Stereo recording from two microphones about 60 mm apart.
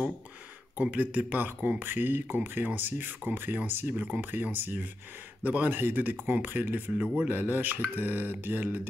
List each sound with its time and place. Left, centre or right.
0.7 s speech: right